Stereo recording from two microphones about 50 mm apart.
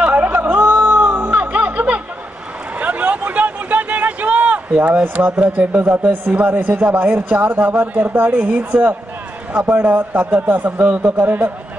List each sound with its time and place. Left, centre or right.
0.0 s a sound: right
1.3 s snicker: right
2.8 s a sound: right
5.1 s speech: right
5.7 s a man's voice: right
6.6 s a man's voice: right
11.1 s a man's voice: right